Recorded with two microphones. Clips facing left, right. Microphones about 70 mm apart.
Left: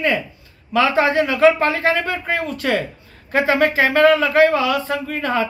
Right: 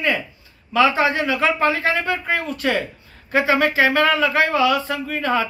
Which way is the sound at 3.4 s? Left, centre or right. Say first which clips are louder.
Left 1 dB; left.